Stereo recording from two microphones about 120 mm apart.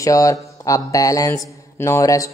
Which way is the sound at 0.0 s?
25° left (ahead or behind).